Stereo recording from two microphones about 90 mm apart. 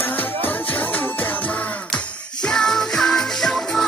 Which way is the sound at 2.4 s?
5° left (ahead or behind).